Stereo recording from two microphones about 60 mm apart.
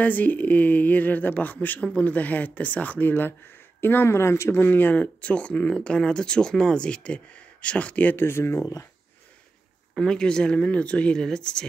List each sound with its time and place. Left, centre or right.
0.0 s speech: left
4.6 s speech: left
8.2 s speech: left
9.9 s speech: centre